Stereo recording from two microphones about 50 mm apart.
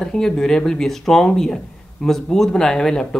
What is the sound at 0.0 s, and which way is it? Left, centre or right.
Speech, centre.